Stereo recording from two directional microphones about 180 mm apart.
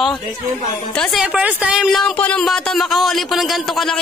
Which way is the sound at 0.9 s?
Centre (ahead or behind).